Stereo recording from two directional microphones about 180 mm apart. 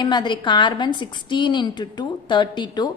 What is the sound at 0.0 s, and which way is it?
A woman's voice, 25° left (ahead or behind).